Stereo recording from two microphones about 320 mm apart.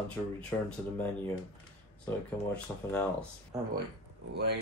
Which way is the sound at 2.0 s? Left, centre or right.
Centre.